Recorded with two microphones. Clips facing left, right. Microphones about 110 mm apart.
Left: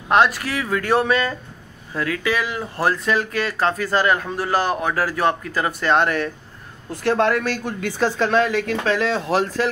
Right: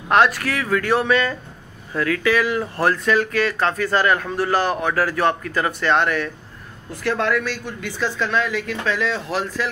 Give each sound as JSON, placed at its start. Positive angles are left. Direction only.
{"t": 0.1, "sound": "speech", "side_deg": 25}
{"t": 8.3, "sound": "speech", "side_deg": 55}